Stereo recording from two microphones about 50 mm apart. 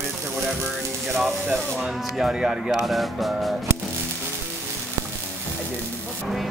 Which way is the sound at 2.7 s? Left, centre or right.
Centre.